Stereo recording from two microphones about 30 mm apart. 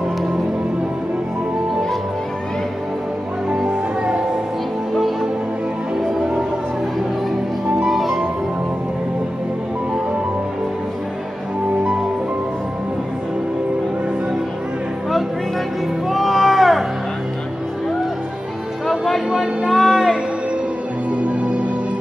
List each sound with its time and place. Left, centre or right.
3.6 s music: right
7.8 s music: centre
16.1 s music: centre
18.9 s music: centre
19.3 s music: centre
21.2 s music: right